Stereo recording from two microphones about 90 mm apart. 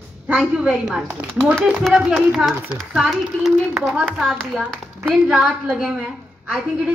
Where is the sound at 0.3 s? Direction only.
5° right (ahead or behind).